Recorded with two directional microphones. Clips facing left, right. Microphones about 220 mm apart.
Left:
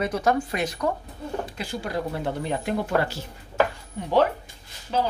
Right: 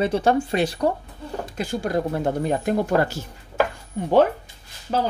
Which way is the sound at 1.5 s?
45° right (ahead or behind).